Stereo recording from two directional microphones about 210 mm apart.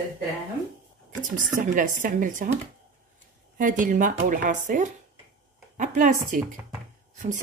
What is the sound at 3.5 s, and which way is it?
A woman's voice, 40° right (ahead or behind).